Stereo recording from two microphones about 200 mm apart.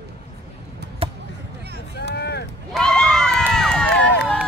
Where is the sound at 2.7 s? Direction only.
5° left (ahead or behind).